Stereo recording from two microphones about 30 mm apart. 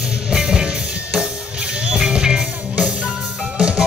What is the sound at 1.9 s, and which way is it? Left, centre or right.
Music, right.